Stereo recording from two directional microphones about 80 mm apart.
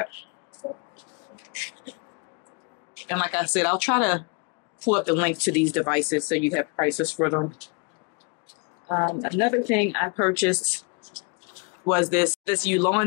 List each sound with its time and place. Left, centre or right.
0.6 s a sound: left
1.3 s beatboxing: centre
3.1 s speech: left
8.8 s speech: left
11.9 s speech: centre